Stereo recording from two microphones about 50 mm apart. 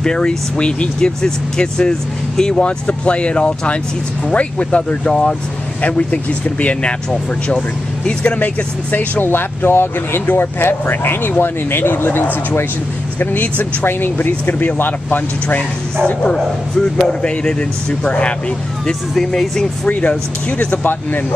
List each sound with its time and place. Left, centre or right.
0.0 s speech: centre
9.2 s speech: left
13.2 s speech: left
17.0 s speech: centre
18.9 s speech: centre
19.9 s speech: left